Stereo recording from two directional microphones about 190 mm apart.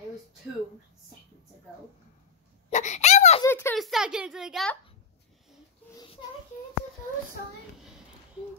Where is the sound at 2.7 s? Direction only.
40° left (ahead or behind).